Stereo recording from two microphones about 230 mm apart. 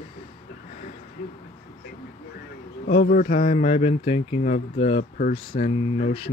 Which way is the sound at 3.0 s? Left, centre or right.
Left.